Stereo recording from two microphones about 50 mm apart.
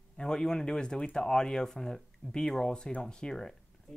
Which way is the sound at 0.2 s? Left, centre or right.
Centre.